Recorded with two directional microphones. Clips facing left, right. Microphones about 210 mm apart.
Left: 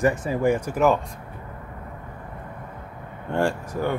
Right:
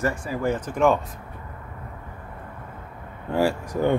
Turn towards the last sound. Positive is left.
turn(degrees=-5)  # may be behind; listen again after turning